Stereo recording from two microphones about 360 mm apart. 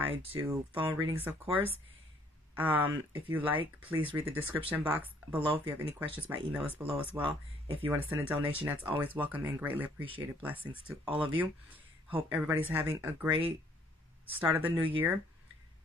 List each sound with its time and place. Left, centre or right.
0.0 s speech: centre
2.5 s speech: centre
14.5 s speech: centre